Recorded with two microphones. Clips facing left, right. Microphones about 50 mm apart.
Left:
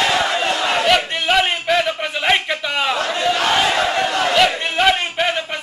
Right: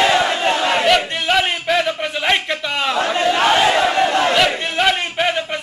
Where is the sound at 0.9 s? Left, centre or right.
Centre.